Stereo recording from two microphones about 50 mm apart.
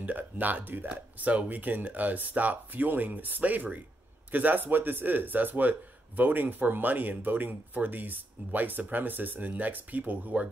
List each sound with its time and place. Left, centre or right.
0.0 s speech: right